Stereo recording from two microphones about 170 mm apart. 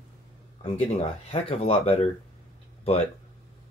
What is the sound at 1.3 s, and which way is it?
Speech, 35° left (ahead or behind).